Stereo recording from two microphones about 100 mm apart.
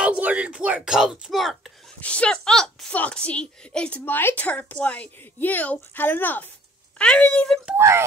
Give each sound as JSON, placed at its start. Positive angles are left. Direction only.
{"t": 0.0, "sound": "speech", "side_deg": -15}
{"t": 2.0, "sound": "a woman's voice", "side_deg": 15}